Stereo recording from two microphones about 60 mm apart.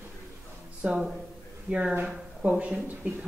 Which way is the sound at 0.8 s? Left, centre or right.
Right.